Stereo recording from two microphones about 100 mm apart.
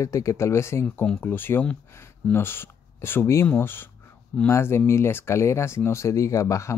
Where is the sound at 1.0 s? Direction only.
15° left (ahead or behind).